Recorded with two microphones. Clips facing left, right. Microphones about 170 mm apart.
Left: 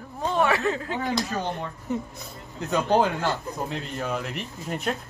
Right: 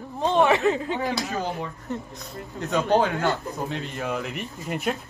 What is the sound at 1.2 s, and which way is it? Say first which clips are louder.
Speech: even; 5° right (ahead or behind).